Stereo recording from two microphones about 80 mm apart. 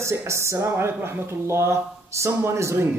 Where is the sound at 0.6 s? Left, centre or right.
Right.